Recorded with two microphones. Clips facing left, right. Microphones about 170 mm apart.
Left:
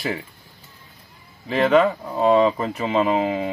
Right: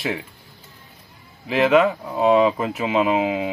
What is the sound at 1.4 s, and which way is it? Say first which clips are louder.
Speech: even; centre (ahead or behind).